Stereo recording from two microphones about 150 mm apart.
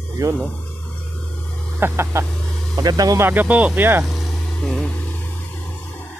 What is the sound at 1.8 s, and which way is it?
Speech, 15° right (ahead or behind).